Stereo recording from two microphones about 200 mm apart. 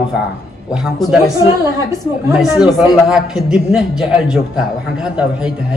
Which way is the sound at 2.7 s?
Centre (ahead or behind).